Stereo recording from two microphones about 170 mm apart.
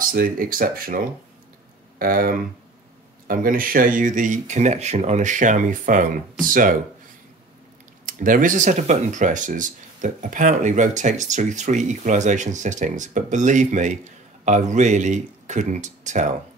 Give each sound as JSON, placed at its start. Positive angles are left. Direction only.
{"t": 0.0, "sound": "speech", "side_deg": -55}
{"t": 8.0, "sound": "speech", "side_deg": -50}